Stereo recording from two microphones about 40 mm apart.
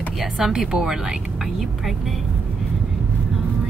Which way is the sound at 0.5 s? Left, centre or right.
Centre.